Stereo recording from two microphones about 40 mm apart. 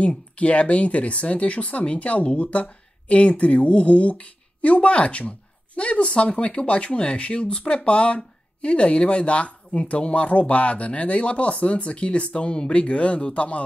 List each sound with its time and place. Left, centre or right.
0.4 s speech: left